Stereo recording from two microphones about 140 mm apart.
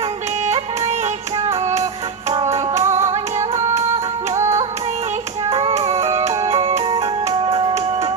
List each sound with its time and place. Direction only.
0.5 s music: 50° right (ahead or behind)